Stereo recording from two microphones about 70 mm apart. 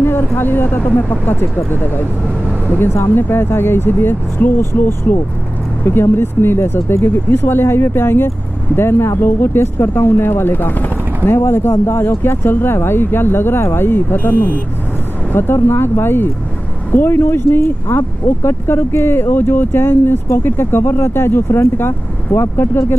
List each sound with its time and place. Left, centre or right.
0.0 s speech: left